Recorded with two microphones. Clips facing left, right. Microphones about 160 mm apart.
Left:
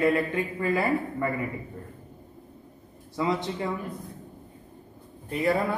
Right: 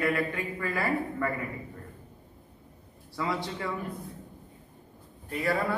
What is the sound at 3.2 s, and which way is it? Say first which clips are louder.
Speech: left 4 dB; 20° left (ahead or behind).